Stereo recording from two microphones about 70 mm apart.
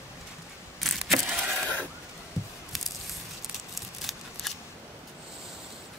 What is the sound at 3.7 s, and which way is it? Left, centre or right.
Scissors, centre.